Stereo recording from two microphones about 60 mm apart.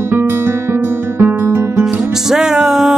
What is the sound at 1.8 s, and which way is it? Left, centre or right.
Music, centre.